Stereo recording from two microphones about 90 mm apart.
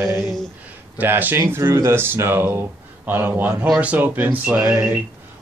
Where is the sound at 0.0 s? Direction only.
35° right (ahead or behind).